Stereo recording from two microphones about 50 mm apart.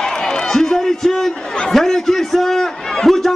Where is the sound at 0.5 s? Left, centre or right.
Centre.